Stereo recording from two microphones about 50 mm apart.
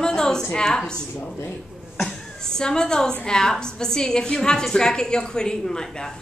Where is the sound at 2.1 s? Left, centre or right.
Centre.